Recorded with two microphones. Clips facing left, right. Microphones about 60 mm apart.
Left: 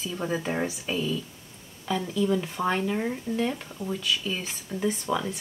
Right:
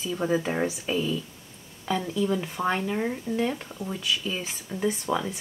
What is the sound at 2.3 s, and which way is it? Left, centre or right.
Speech, centre.